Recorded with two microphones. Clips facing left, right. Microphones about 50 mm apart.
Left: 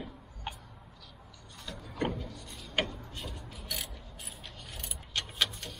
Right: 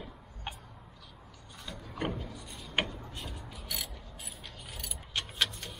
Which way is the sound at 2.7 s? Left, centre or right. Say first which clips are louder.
Even; centre.